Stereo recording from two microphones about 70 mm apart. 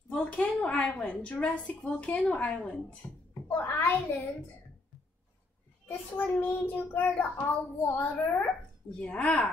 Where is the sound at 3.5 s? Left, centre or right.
Left.